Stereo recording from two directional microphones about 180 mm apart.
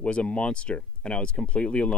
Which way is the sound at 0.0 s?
5° left (ahead or behind).